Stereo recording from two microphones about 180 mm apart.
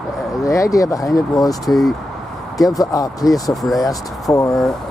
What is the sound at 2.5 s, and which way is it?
Speech, 20° left (ahead or behind).